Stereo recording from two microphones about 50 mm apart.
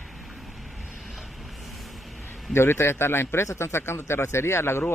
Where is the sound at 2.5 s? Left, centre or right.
Left.